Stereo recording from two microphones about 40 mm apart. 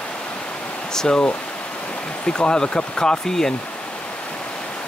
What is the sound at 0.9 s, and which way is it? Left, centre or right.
Speech, left.